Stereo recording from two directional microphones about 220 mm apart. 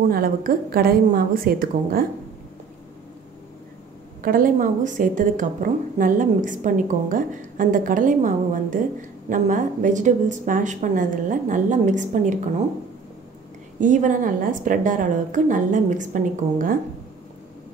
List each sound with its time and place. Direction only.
0.1 s a woman's voice: 40° right (ahead or behind)
4.2 s a woman's voice: 40° right (ahead or behind)
13.7 s a woman's voice: 35° right (ahead or behind)